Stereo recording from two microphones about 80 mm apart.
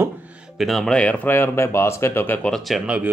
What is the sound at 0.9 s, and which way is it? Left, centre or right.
Speech, centre.